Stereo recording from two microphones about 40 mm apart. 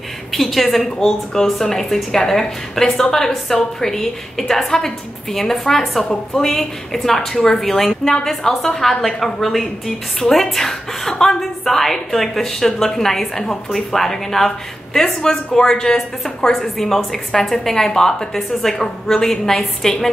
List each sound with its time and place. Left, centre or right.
0.3 s a woman's voice: centre
0.9 s a woman's voice: centre